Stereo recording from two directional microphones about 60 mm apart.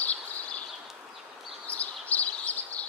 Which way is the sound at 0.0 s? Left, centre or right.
Left.